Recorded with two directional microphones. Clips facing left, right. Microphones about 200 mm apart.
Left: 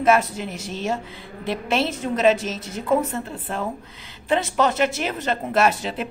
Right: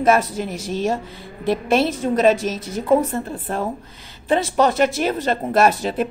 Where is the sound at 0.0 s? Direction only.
40° right (ahead or behind).